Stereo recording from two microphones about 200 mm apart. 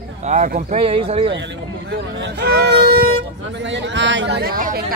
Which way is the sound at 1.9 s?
60° right (ahead or behind).